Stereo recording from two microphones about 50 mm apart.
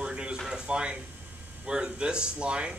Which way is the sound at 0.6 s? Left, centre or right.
Right.